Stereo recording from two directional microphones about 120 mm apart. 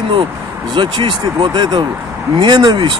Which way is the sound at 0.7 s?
40° right (ahead or behind).